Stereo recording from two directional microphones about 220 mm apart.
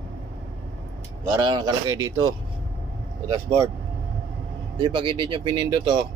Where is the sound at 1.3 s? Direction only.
20° right (ahead or behind).